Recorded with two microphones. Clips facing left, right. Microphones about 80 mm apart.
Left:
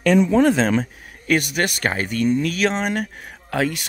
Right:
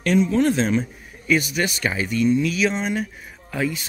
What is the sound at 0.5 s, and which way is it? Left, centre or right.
Speech, left.